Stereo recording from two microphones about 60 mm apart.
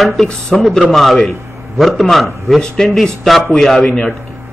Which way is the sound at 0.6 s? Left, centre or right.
Centre.